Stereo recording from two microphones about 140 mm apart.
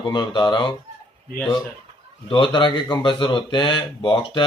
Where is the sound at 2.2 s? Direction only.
35° left (ahead or behind).